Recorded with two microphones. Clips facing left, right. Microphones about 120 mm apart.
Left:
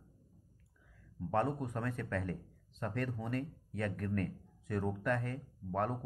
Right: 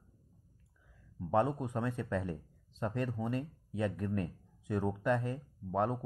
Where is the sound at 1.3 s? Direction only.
15° right (ahead or behind).